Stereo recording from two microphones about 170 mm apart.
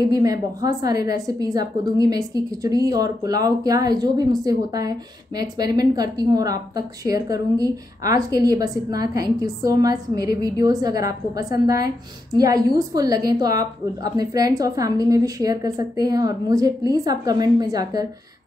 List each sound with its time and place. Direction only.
0.0 s a woman's voice: 20° right (ahead or behind)